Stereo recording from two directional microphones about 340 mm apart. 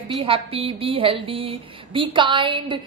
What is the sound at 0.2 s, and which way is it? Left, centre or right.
A woman's voice, centre.